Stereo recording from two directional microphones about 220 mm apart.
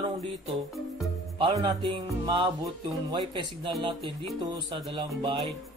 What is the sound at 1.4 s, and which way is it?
Music, 20° right (ahead or behind).